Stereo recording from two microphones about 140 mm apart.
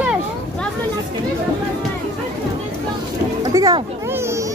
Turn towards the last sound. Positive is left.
turn(degrees=-25)  # may be behind; listen again after turning